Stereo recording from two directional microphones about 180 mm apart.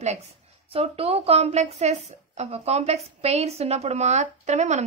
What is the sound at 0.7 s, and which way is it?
Speech, 35° right (ahead or behind).